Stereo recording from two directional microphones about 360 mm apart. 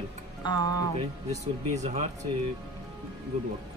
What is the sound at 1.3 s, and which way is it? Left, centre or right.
Speech, centre.